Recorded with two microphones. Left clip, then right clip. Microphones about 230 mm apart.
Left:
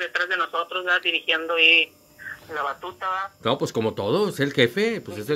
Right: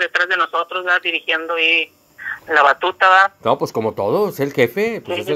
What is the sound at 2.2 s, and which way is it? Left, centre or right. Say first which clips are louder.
Speech: right 15 dB; right.